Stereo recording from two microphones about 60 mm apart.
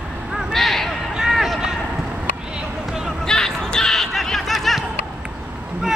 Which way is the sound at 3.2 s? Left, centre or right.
Centre.